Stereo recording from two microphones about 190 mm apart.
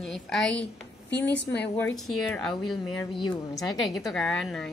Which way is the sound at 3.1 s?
25° left (ahead or behind).